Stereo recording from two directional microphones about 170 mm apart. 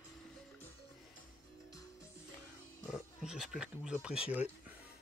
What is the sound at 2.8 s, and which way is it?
Music, centre (ahead or behind).